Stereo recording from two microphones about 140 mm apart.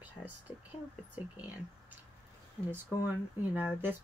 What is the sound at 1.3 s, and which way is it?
Speech, 10° right (ahead or behind).